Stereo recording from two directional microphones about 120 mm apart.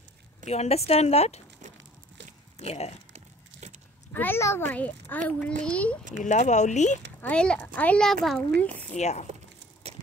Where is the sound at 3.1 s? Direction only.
70° right (ahead or behind).